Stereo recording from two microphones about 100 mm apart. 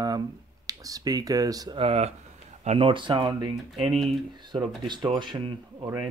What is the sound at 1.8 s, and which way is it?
Speech, 85° right.